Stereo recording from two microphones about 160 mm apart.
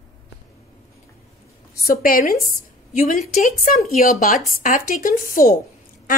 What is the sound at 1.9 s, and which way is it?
A woman's voice, 65° left (ahead or behind).